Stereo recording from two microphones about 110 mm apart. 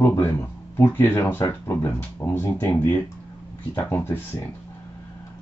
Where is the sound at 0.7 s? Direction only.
20° left (ahead or behind).